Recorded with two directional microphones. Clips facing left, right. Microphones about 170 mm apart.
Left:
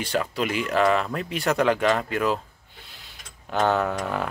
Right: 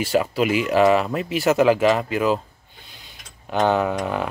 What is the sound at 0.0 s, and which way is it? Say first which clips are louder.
Speech: right 6 dB; 10° right (ahead or behind).